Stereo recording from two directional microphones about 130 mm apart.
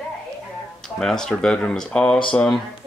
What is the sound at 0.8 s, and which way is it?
Speech, 5° left (ahead or behind).